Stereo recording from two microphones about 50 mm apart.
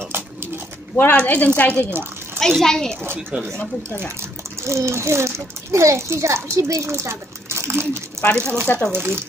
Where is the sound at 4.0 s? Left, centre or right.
Right.